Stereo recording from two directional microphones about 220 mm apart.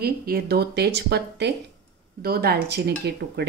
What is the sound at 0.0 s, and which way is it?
A woman's voice, 45° right (ahead or behind).